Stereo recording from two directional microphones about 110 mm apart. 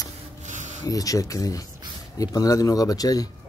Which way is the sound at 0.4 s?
90° right.